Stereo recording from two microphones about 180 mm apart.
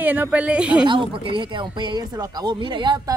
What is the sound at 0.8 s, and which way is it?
Speech, 25° right (ahead or behind).